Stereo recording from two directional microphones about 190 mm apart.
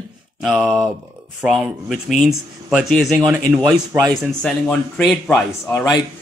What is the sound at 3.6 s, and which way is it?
Speech, 15° right (ahead or behind).